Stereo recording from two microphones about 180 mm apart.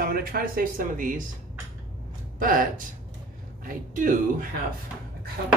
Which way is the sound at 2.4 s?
50° right (ahead or behind).